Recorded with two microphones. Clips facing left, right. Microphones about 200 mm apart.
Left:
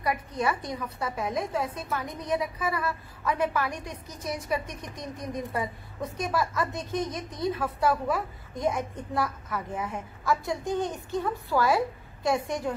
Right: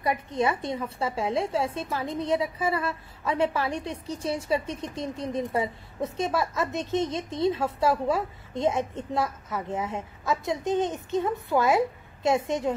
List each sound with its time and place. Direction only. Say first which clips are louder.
0.0 s a woman's voice: right 2 dB; 25° right (ahead or behind)